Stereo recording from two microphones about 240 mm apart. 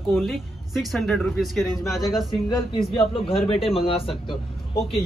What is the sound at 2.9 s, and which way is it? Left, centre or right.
Speech, left.